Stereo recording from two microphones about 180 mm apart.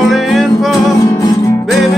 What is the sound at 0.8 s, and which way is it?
Music, 20° left (ahead or behind).